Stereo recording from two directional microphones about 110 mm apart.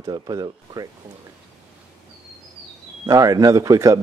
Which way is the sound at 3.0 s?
35° right (ahead or behind).